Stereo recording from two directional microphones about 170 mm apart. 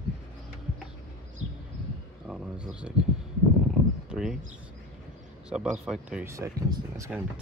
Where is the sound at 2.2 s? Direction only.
5° right (ahead or behind).